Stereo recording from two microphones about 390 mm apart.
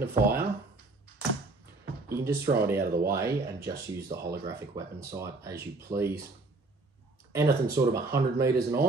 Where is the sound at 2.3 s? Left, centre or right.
Right.